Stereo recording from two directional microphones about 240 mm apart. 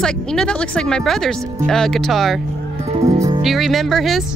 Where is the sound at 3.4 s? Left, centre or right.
Centre.